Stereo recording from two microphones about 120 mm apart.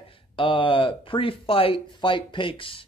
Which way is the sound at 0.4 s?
45° left (ahead or behind).